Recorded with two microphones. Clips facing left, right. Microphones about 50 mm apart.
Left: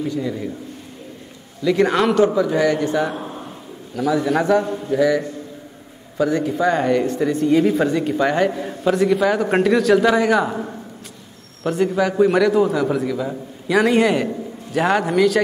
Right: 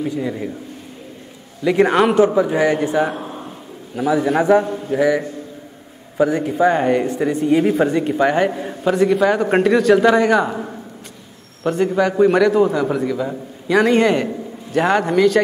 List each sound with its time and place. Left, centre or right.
0.0 s speech: centre
1.6 s a man's voice: right
3.2 s a sound: centre
3.9 s a man's voice: centre